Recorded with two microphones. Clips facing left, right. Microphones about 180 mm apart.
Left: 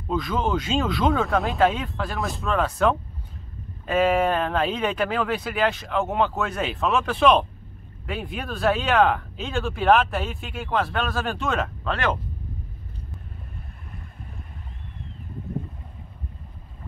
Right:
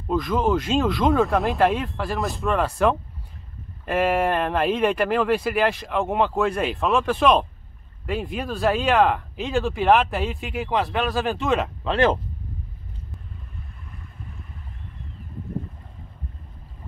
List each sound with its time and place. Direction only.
0.1 s speech: centre (ahead or behind); by 12.2 s 25° right (ahead or behind)